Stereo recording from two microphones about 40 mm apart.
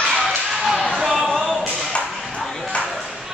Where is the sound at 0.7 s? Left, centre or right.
Centre.